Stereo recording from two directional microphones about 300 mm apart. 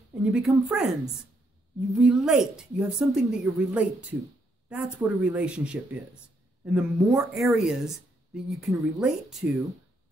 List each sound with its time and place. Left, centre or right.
0.2 s speech: centre
2.0 s speech: centre